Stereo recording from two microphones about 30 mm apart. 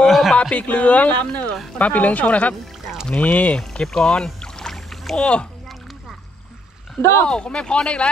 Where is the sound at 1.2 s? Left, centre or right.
Left.